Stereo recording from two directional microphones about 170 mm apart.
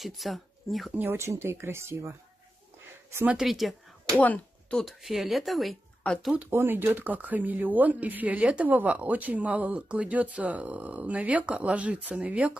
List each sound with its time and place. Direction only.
0.0 s speech: centre (ahead or behind)
1.0 s speech: 15° right (ahead or behind)
3.3 s speech: centre (ahead or behind)